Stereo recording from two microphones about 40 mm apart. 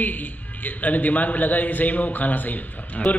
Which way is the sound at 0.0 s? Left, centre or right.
Left.